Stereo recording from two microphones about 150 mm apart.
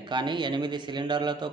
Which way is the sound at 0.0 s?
30° right (ahead or behind).